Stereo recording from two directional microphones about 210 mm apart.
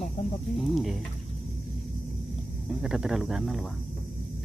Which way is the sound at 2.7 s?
5° right (ahead or behind).